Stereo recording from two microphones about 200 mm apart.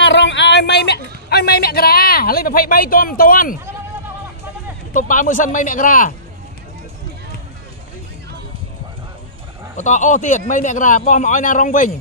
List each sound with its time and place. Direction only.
0.0 s speech: 65° left (ahead or behind); by 3.5 s 45° left (ahead or behind)
4.9 s speech: 40° left (ahead or behind)
9.8 s speech: 35° left (ahead or behind)